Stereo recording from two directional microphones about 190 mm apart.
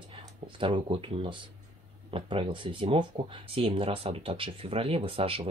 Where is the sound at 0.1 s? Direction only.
25° right (ahead or behind).